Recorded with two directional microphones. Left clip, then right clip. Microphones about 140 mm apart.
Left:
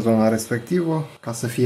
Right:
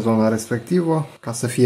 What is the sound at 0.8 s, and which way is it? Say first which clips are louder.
Speech: right 3 dB; 35° right (ahead or behind).